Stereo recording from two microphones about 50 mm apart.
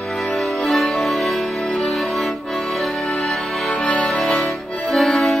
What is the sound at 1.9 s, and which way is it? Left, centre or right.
Accordion, centre.